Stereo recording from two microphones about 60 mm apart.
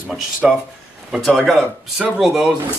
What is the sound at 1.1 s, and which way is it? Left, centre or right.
Speech, centre.